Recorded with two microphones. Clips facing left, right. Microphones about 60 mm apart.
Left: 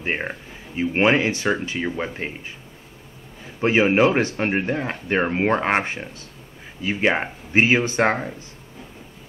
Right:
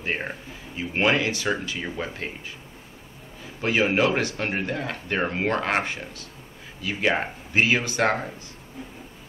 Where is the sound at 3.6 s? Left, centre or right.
Left.